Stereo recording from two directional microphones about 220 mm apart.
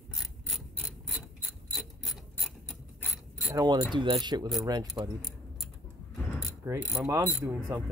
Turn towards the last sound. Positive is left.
turn(degrees=-15)  # may be behind; listen again after turning